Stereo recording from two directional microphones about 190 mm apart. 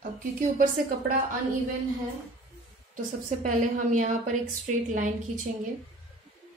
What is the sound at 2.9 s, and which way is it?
A woman's voice, 45° right (ahead or behind).